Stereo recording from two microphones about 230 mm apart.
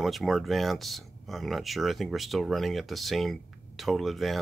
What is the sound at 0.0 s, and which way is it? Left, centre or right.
Speech, centre.